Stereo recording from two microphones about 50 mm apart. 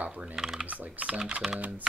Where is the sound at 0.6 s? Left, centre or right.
Right.